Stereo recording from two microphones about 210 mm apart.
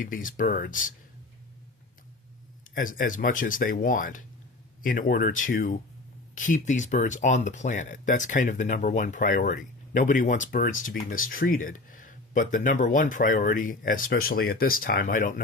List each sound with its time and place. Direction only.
0.0 s speech: 40° left (ahead or behind)
2.7 s speech: 40° left (ahead or behind)